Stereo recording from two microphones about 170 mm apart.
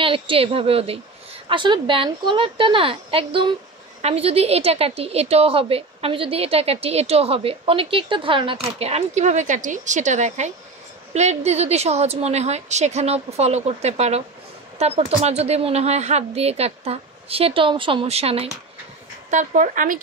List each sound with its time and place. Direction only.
0.0 s a woman's voice: 30° right (ahead or behind)
19.3 s speech: 50° right (ahead or behind)